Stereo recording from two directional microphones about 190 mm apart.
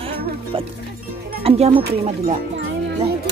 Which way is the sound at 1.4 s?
30° right (ahead or behind).